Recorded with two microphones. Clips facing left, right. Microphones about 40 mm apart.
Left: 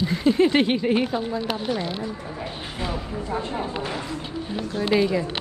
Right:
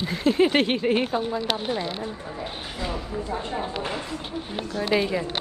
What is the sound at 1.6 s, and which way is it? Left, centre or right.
Speech, right.